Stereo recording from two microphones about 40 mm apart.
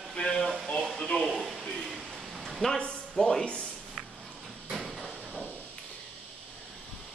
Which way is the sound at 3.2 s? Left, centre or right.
Left.